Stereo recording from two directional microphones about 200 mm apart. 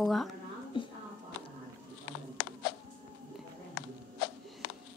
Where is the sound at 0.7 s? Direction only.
25° left (ahead or behind).